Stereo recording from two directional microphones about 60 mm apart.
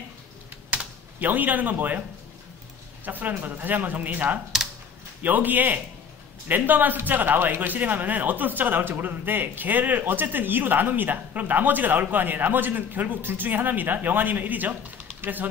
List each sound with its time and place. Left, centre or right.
1.2 s speech: right
3.1 s a man's voice: right